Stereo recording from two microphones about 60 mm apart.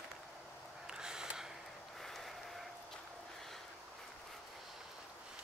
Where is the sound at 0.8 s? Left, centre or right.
Centre.